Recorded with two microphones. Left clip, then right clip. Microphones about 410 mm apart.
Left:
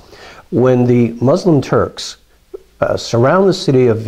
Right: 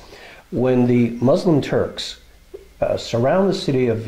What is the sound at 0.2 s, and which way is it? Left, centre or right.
Speech, left.